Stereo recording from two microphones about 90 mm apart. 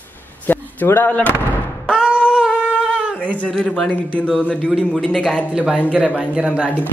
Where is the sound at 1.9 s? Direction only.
10° right (ahead or behind).